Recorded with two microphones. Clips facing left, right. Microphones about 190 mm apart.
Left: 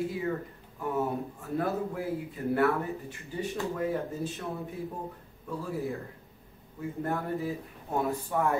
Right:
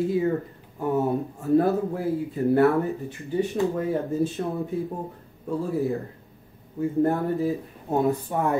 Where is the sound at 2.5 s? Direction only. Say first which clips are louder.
Right 7 dB; 25° right (ahead or behind).